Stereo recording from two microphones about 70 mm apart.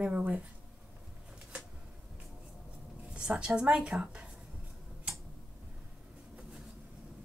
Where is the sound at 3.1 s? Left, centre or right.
Centre.